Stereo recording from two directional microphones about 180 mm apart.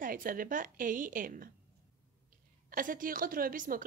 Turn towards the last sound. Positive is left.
turn(degrees=-50)  # may be behind; listen again after turning